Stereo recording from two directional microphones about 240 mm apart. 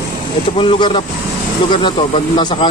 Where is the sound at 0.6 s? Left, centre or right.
Centre.